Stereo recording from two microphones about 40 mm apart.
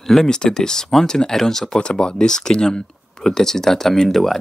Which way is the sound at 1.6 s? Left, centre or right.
Left.